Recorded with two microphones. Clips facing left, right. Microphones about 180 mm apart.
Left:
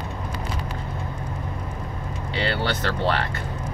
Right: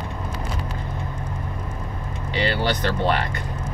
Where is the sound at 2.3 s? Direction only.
15° right (ahead or behind).